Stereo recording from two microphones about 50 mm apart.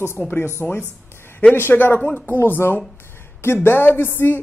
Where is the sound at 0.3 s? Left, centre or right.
Left.